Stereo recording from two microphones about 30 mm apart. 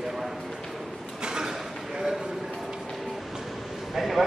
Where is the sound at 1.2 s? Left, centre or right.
Right.